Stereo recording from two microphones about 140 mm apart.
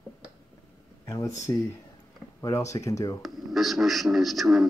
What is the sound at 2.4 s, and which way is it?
Speech, 20° left (ahead or behind).